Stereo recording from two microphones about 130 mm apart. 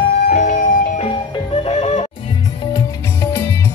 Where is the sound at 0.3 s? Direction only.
75° left (ahead or behind).